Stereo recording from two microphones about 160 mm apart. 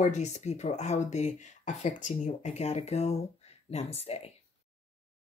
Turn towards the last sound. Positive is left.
turn(degrees=40)  # may be behind; listen again after turning